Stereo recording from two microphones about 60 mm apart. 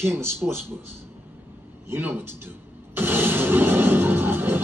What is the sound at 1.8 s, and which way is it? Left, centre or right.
Speech, right.